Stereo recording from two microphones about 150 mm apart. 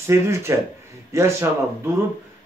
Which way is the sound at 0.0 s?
20° right (ahead or behind).